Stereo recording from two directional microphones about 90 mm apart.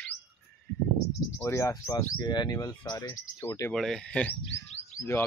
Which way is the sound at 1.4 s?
30° left (ahead or behind).